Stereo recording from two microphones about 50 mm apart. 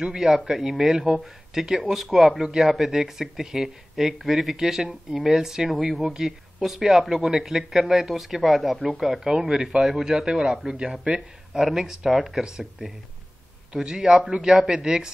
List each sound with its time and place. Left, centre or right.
0.0 s speech: centre
11.1 s speech: centre